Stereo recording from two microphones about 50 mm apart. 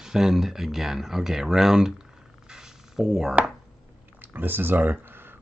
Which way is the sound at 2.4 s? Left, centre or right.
Centre.